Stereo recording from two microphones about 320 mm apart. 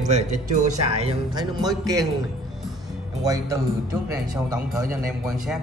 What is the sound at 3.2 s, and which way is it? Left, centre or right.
A man's voice, centre.